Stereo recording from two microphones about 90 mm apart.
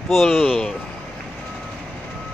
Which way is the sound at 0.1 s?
Centre (ahead or behind).